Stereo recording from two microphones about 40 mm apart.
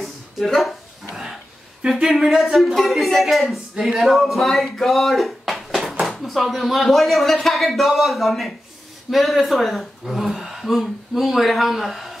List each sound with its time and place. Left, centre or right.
0.0 s a sound: centre
1.8 s speech: centre
2.0 s speech: centre